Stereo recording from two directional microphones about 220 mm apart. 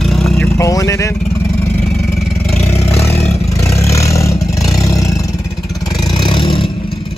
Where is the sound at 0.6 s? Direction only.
15° left (ahead or behind).